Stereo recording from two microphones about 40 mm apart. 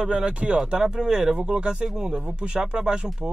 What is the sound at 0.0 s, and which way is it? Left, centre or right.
Speech, right.